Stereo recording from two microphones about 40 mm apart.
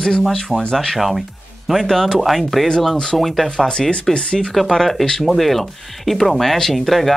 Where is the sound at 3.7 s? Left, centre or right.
Left.